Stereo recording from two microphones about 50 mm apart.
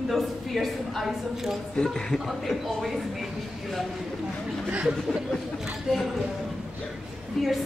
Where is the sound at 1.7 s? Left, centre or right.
Centre.